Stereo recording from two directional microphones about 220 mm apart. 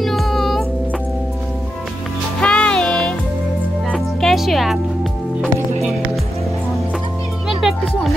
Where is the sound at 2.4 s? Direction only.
5° left (ahead or behind).